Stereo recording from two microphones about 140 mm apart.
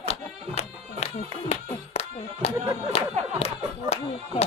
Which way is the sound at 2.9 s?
45° left (ahead or behind).